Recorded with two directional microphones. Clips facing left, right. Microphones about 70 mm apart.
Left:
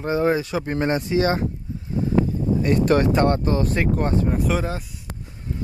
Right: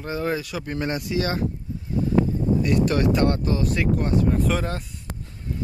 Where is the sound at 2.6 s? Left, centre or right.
Left.